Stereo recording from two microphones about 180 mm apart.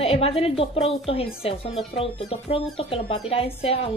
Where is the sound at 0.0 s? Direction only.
35° left (ahead or behind).